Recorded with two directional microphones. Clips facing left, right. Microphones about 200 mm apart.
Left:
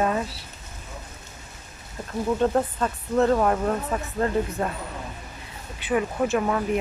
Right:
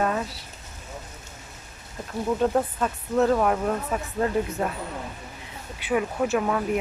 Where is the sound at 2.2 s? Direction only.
Centre (ahead or behind).